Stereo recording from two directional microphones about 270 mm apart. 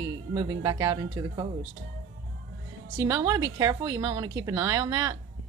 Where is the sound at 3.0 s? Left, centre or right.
Centre.